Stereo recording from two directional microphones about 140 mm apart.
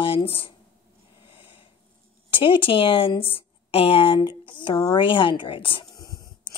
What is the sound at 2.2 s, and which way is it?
Speech, 40° left (ahead or behind).